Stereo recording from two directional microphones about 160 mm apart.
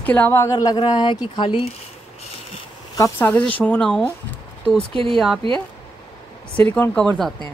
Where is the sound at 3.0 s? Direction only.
10° left (ahead or behind).